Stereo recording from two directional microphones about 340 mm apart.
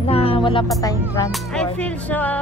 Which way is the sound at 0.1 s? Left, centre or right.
Centre.